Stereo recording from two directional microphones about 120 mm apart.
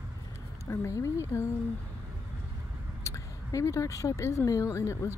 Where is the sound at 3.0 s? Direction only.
25° left (ahead or behind).